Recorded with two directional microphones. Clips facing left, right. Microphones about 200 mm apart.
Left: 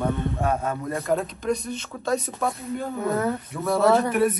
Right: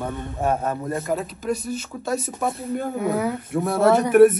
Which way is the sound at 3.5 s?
55° right (ahead or behind).